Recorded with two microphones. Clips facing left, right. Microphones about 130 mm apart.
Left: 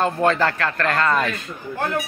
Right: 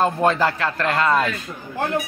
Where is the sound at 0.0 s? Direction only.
10° right (ahead or behind).